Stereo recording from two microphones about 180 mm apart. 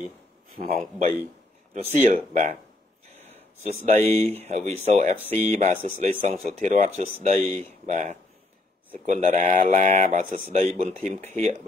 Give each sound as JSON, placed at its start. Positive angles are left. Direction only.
{"t": 0.6, "sound": "speech", "side_deg": -40}
{"t": 3.6, "sound": "speech", "side_deg": -40}